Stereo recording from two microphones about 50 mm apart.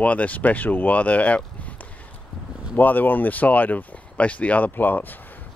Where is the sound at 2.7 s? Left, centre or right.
Left.